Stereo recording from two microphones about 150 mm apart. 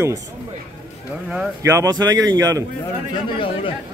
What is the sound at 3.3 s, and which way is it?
Speech, 35° left (ahead or behind).